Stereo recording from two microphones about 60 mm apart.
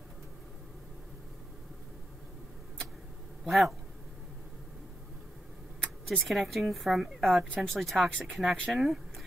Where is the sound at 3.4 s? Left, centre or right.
Centre.